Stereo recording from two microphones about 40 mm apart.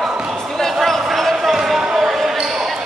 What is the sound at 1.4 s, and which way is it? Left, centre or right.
Basketball bounce, centre.